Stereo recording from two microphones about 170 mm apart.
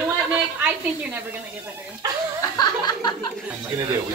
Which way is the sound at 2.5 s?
25° left (ahead or behind).